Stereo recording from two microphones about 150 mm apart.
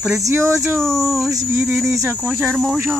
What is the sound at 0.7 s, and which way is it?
Speech, centre (ahead or behind).